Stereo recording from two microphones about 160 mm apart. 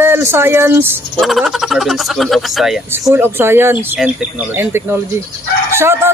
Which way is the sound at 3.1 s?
15° right (ahead or behind).